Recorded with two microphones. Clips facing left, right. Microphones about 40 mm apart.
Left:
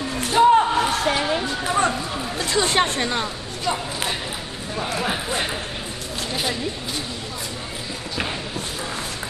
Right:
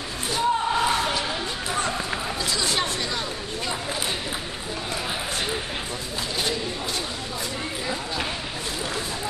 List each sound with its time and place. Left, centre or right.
0.3 s a sound: left
1.7 s run: left
2.3 s speech: left
4.9 s speech: left